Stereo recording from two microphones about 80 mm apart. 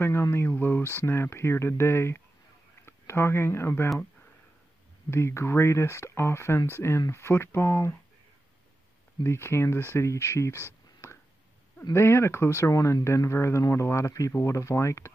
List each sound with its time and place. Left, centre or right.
0.0 s speech: left
5.1 s speech: left
9.2 s speech: left